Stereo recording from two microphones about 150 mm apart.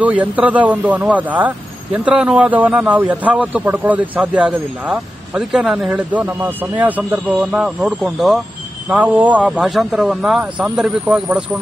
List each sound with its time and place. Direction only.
0.0 s speech: 10° right (ahead or behind)